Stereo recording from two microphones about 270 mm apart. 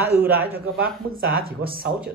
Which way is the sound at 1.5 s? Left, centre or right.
Right.